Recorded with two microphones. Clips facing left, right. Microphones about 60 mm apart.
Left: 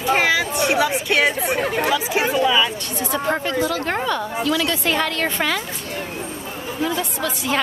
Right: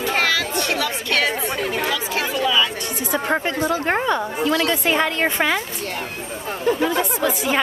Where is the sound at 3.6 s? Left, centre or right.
Right.